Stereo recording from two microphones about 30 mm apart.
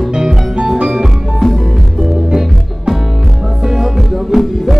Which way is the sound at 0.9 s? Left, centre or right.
Centre.